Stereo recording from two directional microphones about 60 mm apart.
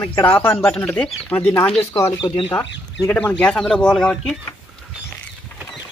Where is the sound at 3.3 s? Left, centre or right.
Centre.